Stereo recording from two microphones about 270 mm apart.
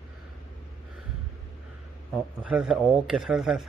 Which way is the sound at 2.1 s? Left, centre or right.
Centre.